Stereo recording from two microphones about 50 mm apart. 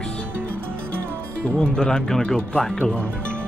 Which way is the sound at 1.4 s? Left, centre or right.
Left.